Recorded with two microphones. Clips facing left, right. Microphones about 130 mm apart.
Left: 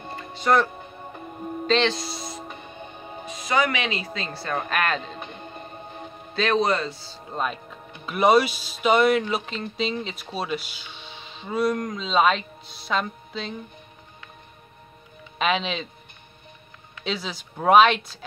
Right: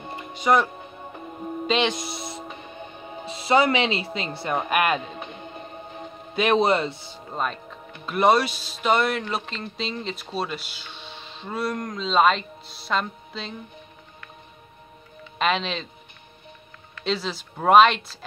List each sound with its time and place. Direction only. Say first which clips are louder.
0.0 s music: right 1 dB; 15° right (ahead or behind)
1.4 s speech: left 1 dB; 10° right (ahead or behind)
2.4 s music: right 1 dB; centre (ahead or behind)
3.3 s a woman's voice: right 4 dB; 30° right (ahead or behind); by 6.0 s 5° right (ahead or behind)
6.3 s speech: right 2 dB; 20° right (ahead or behind)
7.2 s speech: even; centre (ahead or behind)
15.3 s speech: even; centre (ahead or behind)
17.0 s speech: right 3 dB; centre (ahead or behind)